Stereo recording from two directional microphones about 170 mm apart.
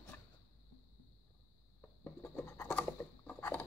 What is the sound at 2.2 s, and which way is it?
Patter, 10° left (ahead or behind).